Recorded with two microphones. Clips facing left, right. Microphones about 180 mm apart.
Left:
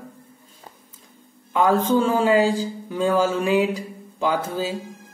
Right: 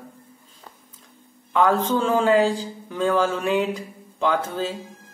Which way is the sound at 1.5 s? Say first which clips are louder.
Left 2 dB; 5° left (ahead or behind).